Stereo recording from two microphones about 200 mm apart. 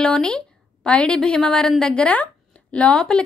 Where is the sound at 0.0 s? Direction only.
5° left (ahead or behind).